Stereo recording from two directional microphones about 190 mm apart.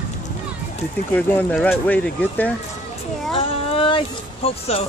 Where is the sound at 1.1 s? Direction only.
10° left (ahead or behind).